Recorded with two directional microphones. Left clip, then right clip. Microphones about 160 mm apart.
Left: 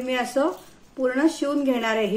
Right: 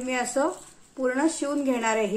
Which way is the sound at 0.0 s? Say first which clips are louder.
Left 2 dB; 15° right (ahead or behind).